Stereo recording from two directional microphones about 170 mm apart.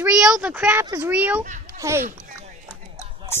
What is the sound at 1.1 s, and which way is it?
Speech, 10° right (ahead or behind).